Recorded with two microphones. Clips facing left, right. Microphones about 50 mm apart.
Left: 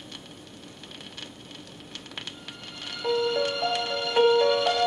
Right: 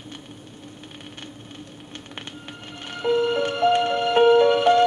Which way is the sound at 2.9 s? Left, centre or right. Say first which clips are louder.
Right 5 dB; right.